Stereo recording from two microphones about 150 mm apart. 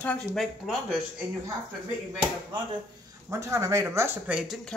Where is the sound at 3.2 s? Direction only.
20° right (ahead or behind); by 4.7 s centre (ahead or behind).